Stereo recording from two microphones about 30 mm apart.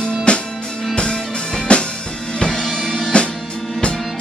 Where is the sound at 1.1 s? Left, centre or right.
Left.